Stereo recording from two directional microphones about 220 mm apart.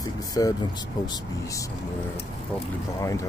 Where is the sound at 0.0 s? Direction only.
15° left (ahead or behind).